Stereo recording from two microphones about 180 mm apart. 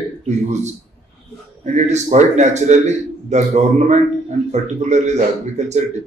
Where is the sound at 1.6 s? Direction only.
40° right (ahead or behind).